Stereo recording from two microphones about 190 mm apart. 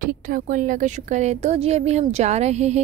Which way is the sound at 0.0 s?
45° right (ahead or behind).